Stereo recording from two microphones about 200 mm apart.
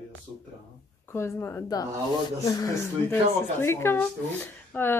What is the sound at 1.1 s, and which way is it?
Speech, 15° left (ahead or behind).